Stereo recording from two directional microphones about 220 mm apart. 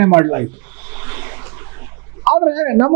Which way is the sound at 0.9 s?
15° right (ahead or behind).